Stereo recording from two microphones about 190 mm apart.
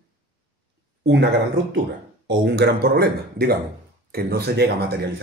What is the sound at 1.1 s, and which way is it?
Speech, 65° right (ahead or behind).